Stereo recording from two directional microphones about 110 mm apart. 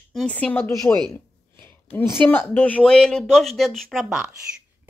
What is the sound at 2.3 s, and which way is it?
Speech, 15° left (ahead or behind).